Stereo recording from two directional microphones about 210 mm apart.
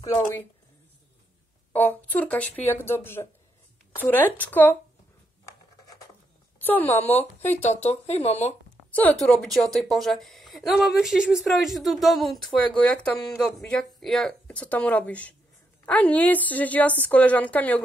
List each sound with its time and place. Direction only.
0.0 s a woman's voice: 10° left (ahead or behind)
1.7 s a woman's voice: 10° left (ahead or behind)
5.4 s scissors: 15° left (ahead or behind)
6.6 s a woman's voice: 10° left (ahead or behind)
7.7 s speech: 30° left (ahead or behind)
8.9 s a woman's voice: 5° left (ahead or behind)